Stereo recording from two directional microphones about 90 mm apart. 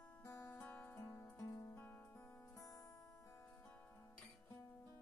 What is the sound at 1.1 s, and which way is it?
Music, 30° left (ahead or behind).